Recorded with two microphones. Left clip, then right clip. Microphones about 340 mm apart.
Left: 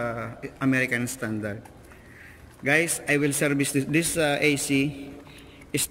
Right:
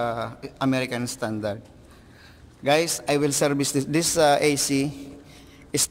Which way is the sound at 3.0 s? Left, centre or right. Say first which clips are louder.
Right 2 dB; centre.